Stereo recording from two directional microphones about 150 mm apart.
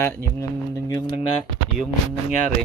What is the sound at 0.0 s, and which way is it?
Speech, 15° left (ahead or behind).